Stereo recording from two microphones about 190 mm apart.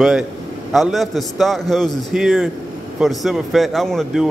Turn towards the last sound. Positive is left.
turn(degrees=0)  # may be behind; listen again after turning